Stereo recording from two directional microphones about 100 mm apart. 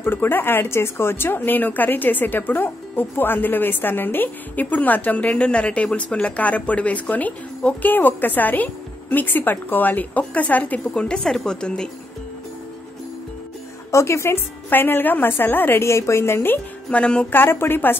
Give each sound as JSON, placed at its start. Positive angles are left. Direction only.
{"t": 0.0, "sound": "speech", "side_deg": 20}
{"t": 13.9, "sound": "a woman's voice", "side_deg": 30}